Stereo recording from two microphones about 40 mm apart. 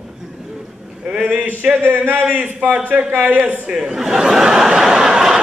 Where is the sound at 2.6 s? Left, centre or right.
Right.